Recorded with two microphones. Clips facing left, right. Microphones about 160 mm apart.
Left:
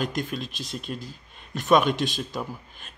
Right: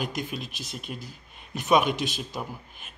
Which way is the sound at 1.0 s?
15° right (ahead or behind).